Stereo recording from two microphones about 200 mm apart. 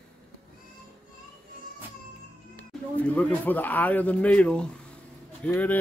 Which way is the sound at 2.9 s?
5° left (ahead or behind).